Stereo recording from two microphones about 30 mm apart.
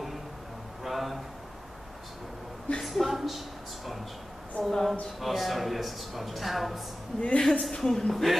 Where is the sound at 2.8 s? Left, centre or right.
Centre.